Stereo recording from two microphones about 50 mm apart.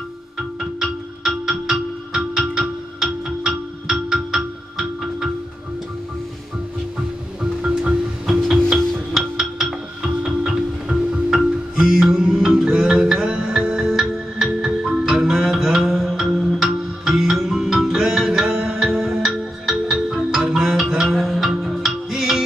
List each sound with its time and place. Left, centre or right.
0.4 s music: centre
7.6 s music: right
8.3 s music: centre